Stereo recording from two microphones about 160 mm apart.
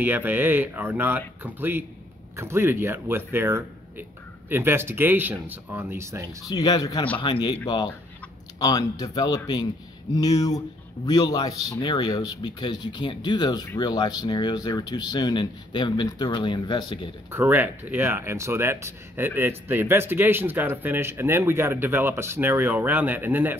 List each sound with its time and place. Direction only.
0.0 s speech: 10° right (ahead or behind)
6.4 s speech: 25° left (ahead or behind)
17.3 s speech: 15° right (ahead or behind)